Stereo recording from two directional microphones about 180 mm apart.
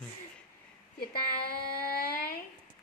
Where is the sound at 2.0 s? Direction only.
55° left (ahead or behind).